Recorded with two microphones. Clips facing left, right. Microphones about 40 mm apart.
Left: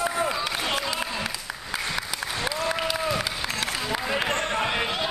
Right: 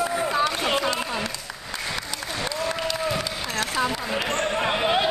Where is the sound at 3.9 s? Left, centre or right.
Centre.